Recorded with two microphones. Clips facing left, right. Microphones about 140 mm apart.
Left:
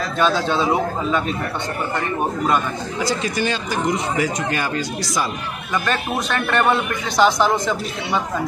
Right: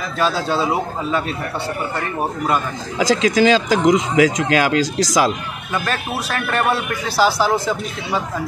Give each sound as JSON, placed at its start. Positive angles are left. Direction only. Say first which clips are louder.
{"t": 0.2, "sound": "speech", "louder": "even", "side_deg": -5}
{"t": 3.0, "sound": "speech", "louder": "right 8 dB", "side_deg": -90}
{"t": 6.5, "sound": "speech", "louder": "left 1 dB", "side_deg": -5}